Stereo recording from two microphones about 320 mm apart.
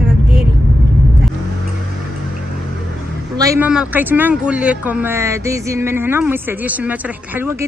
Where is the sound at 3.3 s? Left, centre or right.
Centre.